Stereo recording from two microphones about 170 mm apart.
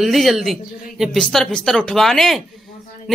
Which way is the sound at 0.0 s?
Centre (ahead or behind).